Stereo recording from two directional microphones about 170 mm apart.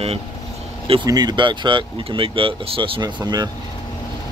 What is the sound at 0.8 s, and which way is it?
Speech, 25° right (ahead or behind).